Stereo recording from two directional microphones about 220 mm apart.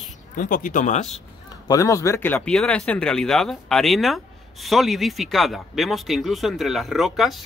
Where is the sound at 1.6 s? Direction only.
15° left (ahead or behind).